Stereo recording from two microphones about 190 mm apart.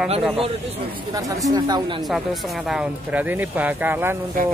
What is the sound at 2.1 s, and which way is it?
Speech, centre (ahead or behind).